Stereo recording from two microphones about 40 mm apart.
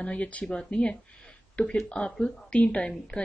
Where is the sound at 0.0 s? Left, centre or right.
Left.